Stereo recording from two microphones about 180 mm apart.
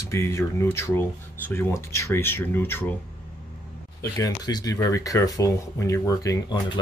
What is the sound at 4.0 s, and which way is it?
Speech, 20° left (ahead or behind).